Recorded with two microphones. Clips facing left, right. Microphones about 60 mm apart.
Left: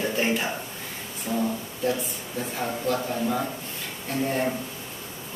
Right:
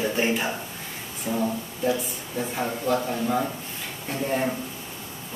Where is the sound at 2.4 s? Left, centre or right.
Centre.